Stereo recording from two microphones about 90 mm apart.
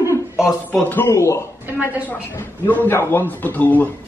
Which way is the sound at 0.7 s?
20° left (ahead or behind).